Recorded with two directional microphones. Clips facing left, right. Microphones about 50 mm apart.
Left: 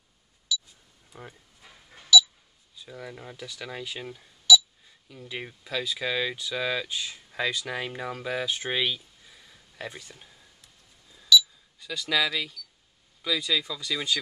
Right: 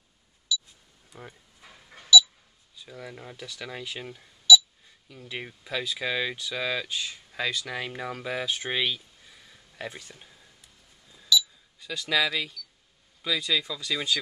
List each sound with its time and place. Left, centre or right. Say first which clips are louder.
1.1 s speech: even; centre
1.6 s a sound: right 3 dB; centre
2.8 s speech: left 1 dB; centre
5.7 s speech: even; centre
7.8 s speech: left 1 dB; centre
11.8 s speech: even; centre